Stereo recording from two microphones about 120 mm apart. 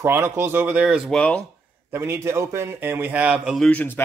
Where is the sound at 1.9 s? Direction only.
20° right (ahead or behind).